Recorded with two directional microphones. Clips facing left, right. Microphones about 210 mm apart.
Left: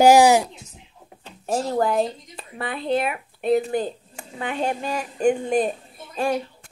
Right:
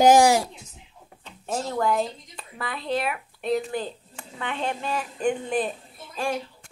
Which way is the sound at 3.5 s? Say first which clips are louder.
Left 5 dB; 45° left (ahead or behind).